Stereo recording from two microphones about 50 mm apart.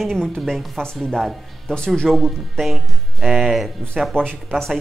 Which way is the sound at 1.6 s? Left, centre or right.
Centre.